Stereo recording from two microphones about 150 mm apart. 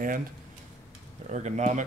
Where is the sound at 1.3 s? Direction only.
50° right (ahead or behind).